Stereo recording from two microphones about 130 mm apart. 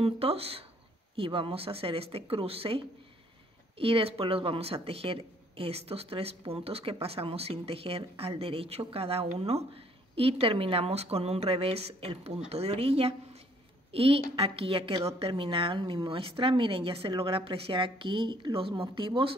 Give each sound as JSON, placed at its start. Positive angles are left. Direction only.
{"t": 0.0, "sound": "speech", "side_deg": -50}